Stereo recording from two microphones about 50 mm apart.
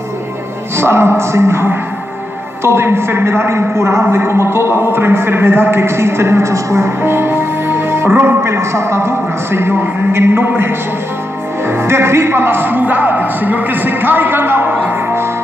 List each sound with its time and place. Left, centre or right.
0.7 s speech: right
4.0 s a man's voice: right
7.0 s speech: right
8.5 s a man's voice: right